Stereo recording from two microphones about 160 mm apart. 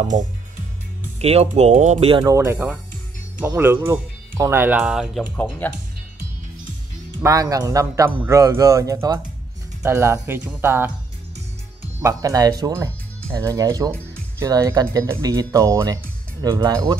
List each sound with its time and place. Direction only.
1.2 s speech: 40° right (ahead or behind)
2.2 s speech: 15° right (ahead or behind)
5.3 s speech: 10° left (ahead or behind)
7.2 s speech: 20° right (ahead or behind)
12.0 s speech: 20° right (ahead or behind)